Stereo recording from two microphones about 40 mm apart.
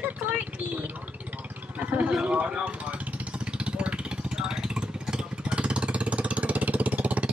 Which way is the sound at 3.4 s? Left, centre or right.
Right.